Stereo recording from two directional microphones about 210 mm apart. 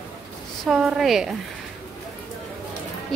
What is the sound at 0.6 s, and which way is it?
Speech, 5° right (ahead or behind).